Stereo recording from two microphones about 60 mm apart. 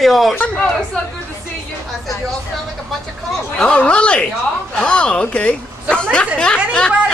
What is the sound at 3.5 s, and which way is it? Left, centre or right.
A woman's voice, centre.